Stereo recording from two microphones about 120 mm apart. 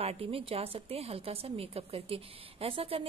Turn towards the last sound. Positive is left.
turn(degrees=-50)  # may be behind; listen again after turning